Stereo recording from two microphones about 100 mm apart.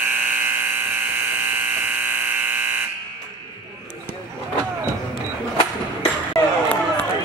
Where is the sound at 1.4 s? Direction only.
15° right (ahead or behind).